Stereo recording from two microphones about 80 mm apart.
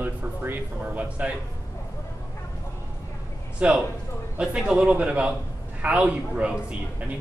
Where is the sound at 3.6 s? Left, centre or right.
Centre.